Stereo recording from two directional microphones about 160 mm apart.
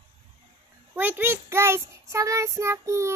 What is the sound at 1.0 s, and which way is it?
Child singing, 10° right (ahead or behind).